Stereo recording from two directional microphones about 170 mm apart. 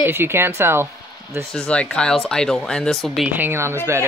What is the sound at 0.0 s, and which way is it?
Speech, 15° right (ahead or behind).